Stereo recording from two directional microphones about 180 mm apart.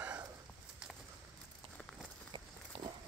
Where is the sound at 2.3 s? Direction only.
25° right (ahead or behind).